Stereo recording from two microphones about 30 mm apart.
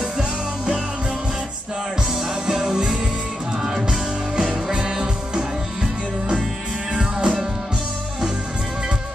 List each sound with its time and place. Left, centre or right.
2.4 s music: centre
6.9 s music: right